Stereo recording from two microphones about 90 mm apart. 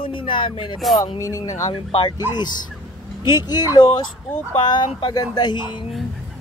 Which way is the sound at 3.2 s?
55° left (ahead or behind).